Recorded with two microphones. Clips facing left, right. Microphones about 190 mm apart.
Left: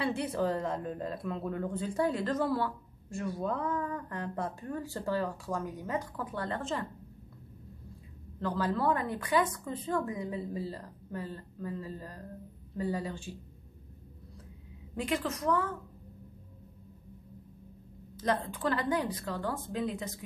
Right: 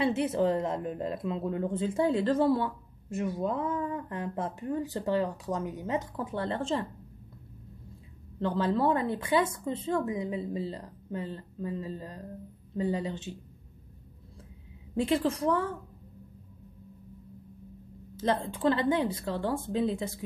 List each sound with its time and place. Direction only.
0.0 s a woman's voice: 20° right (ahead or behind)
8.4 s a woman's voice: 25° right (ahead or behind)
15.0 s a woman's voice: 30° right (ahead or behind)
18.1 s a woman's voice: 25° right (ahead or behind)